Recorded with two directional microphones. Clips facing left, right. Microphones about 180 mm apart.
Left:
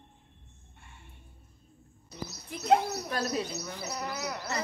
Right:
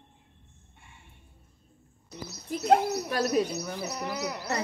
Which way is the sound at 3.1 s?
10° right (ahead or behind).